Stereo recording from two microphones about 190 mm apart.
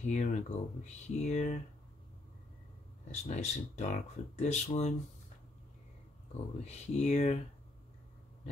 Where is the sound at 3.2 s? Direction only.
35° left (ahead or behind).